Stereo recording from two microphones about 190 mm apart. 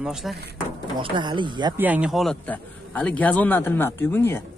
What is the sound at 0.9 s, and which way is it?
Speech, 25° right (ahead or behind).